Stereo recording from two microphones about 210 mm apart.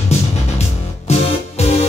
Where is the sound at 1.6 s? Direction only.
30° left (ahead or behind).